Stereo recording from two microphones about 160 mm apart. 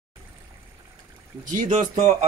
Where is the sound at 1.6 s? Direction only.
45° right (ahead or behind).